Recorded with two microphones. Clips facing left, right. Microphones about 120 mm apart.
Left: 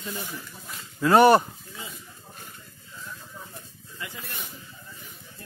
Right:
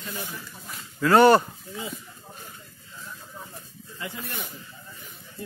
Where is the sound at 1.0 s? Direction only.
20° left (ahead or behind).